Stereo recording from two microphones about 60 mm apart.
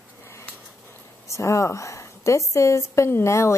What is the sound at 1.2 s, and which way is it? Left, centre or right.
A woman's voice, left.